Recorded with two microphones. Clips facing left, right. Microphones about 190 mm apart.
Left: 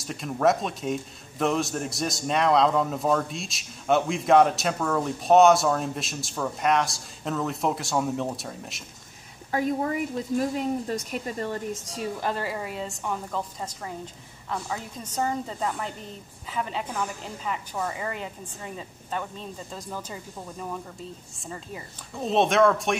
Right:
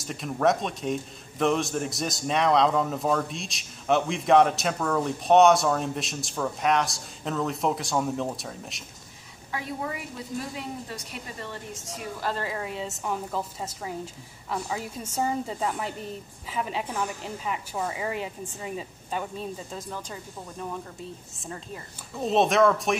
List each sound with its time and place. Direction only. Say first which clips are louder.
0.0 s a man's voice: left 1 dB; centre (ahead or behind)
9.5 s a woman's voice: left 7 dB; 45° left (ahead or behind)
12.2 s a man's voice: right 2 dB; 15° left (ahead or behind)
22.2 s a man's voice: even; centre (ahead or behind)